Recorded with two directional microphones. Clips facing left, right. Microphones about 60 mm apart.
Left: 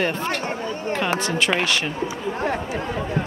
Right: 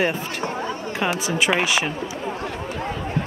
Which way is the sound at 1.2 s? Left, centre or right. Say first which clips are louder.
Right 1 dB; centre.